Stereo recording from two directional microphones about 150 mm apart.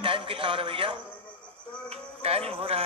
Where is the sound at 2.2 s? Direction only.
40° right (ahead or behind).